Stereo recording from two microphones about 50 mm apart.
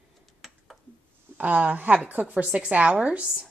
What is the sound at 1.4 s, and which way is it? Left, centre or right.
A woman's voice, right.